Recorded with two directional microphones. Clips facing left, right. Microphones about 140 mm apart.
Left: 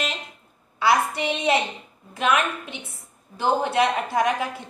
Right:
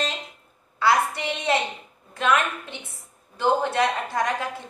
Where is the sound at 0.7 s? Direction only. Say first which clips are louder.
Left 1 dB; 15° left (ahead or behind).